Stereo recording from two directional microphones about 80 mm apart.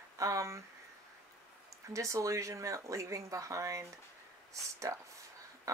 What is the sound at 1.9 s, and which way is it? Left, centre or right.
Speech, right.